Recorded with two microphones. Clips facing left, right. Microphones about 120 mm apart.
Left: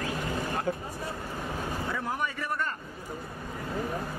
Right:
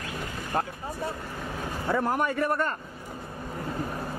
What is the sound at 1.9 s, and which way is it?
Speech, 55° right (ahead or behind).